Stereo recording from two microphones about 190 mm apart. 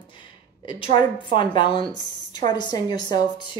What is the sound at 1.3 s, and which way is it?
A woman's voice, 25° left (ahead or behind).